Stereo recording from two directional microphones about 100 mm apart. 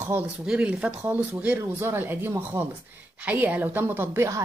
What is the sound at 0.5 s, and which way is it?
A woman's voice, 10° right (ahead or behind).